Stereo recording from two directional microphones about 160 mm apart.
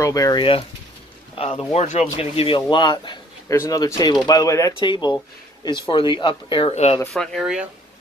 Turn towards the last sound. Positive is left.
turn(degrees=-5)  # may be behind; listen again after turning